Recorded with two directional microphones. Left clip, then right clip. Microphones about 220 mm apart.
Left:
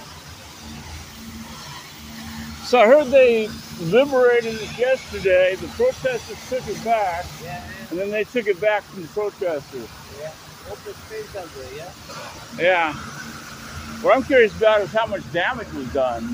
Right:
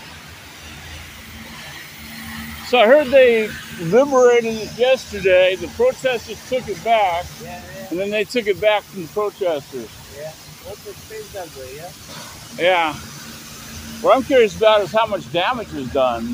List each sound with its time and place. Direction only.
2.7 s speech: centre (ahead or behind)
3.0 s speech: 15° right (ahead or behind)
12.5 s speech: 25° right (ahead or behind)
14.0 s speech: 25° right (ahead or behind)